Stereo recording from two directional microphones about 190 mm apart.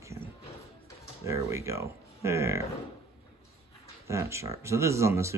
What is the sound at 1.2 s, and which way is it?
Speech, 15° right (ahead or behind).